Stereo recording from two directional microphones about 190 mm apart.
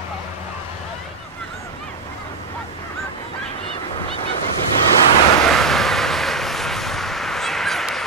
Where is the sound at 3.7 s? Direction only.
30° left (ahead or behind).